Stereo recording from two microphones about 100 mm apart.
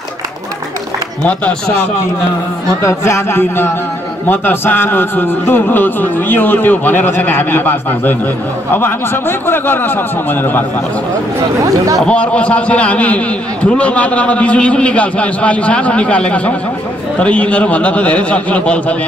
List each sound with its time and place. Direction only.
1.2 s a man's voice: 15° left (ahead or behind)
2.8 s speech: 30° left (ahead or behind)
11.6 s speech: 35° right (ahead or behind)
12.0 s a man's voice: 10° left (ahead or behind)